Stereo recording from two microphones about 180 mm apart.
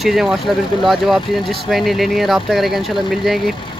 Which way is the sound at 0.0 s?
Centre (ahead or behind).